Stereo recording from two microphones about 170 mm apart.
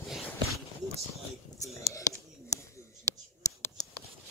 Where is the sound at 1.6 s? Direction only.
20° left (ahead or behind).